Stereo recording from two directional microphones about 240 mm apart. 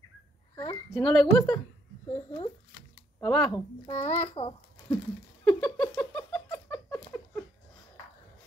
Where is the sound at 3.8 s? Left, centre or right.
Left.